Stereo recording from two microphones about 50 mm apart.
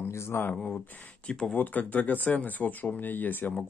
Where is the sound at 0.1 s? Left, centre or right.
Left.